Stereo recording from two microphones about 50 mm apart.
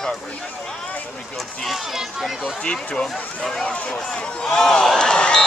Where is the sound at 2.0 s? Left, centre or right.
Centre.